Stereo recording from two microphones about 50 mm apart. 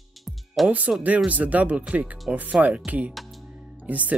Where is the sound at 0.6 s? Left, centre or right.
Right.